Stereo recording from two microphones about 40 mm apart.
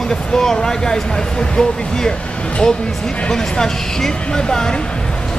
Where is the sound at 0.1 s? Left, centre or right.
Centre.